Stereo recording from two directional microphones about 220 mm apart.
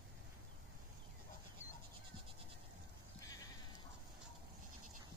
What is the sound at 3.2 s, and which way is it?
Sheep, 15° left (ahead or behind).